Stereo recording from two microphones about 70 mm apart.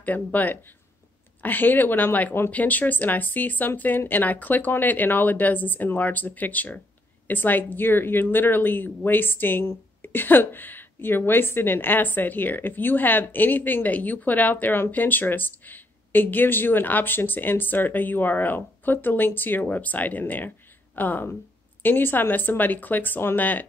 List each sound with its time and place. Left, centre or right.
0.0 s a woman's voice: left